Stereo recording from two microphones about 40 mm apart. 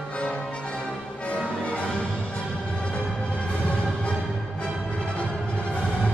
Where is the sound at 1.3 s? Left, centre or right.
Left.